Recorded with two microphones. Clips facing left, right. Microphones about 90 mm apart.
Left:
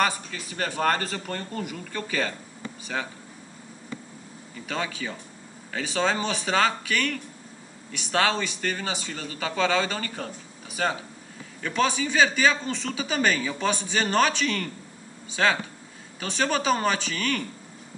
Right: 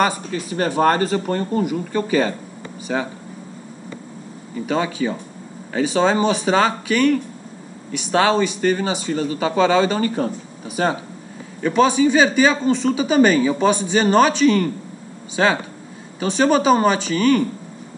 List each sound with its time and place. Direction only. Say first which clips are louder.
0.3 s speech: right 10 dB; 25° right (ahead or behind)
4.6 s speech: right 10 dB; 15° right (ahead or behind)
11.6 s speech: right 10 dB; 15° right (ahead or behind)